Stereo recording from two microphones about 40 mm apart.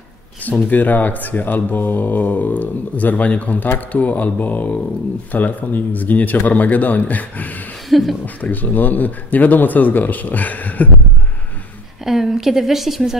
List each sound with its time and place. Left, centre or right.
0.7 s speech: left
7.9 s speech: centre
8.4 s speech: left
12.0 s speech: centre